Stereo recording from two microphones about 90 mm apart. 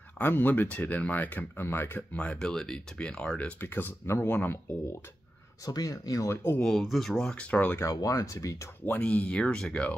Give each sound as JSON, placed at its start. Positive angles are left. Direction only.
{"t": 0.2, "sound": "speech", "side_deg": 20}
{"t": 5.7, "sound": "speech", "side_deg": 45}
{"t": 6.3, "sound": "speech", "side_deg": 25}
{"t": 6.6, "sound": "speech", "side_deg": 0}
{"t": 7.8, "sound": "speech", "side_deg": 40}
{"t": 8.8, "sound": "speech", "side_deg": 15}